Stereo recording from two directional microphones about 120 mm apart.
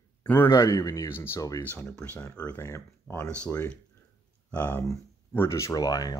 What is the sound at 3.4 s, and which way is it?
Speech, 10° left (ahead or behind).